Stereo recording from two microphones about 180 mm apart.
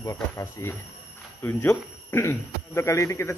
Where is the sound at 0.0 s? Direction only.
15° left (ahead or behind).